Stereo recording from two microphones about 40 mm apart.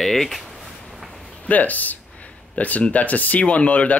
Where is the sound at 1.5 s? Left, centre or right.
Left.